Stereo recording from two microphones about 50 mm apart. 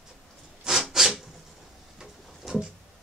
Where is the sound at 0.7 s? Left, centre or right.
Centre.